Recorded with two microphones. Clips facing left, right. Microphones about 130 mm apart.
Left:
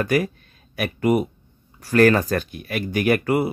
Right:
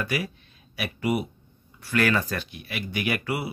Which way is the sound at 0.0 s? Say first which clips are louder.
Left 8 dB; 45° left (ahead or behind).